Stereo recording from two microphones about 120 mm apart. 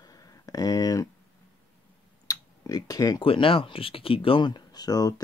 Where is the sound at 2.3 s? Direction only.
30° left (ahead or behind).